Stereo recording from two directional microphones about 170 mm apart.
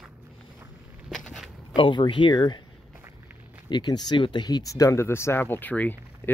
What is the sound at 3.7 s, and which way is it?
Speech, 25° left (ahead or behind).